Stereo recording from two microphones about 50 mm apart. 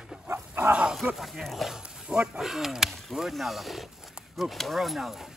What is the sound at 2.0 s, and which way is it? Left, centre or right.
Speech, centre.